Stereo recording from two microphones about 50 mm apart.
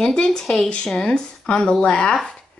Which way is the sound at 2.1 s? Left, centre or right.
Centre.